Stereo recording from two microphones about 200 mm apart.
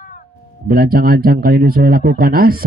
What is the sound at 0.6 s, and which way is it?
Speech, 50° right (ahead or behind).